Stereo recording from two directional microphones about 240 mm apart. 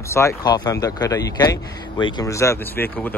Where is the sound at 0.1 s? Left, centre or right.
Centre.